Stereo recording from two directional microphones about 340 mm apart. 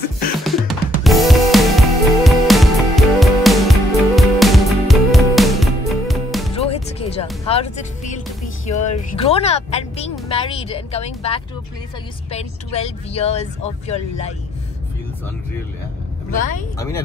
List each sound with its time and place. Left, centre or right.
0.4 s music: centre
6.5 s music: centre
7.4 s speech: centre
16.3 s speech: left
16.7 s speech: centre